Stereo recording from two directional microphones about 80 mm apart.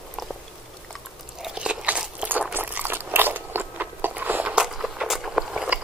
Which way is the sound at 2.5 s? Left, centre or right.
Right.